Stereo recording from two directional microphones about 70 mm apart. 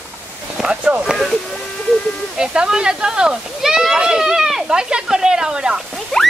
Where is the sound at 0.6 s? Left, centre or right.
Centre.